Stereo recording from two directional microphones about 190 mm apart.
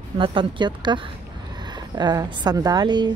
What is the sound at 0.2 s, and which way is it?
Speech, 25° right (ahead or behind).